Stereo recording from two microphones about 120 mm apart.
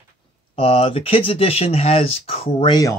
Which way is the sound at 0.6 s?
50° left (ahead or behind).